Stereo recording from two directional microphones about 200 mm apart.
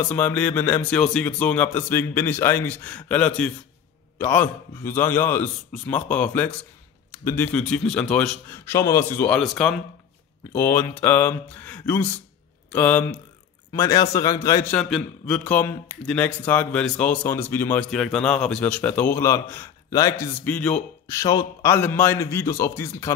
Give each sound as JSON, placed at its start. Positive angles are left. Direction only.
{"t": 0.1, "sound": "a man's voice", "side_deg": 10}
{"t": 14.8, "sound": "a man's voice", "side_deg": 5}